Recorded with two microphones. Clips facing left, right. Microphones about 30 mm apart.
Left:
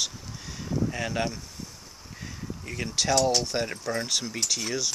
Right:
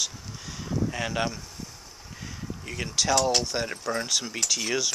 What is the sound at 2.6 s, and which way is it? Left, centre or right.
Speech, centre.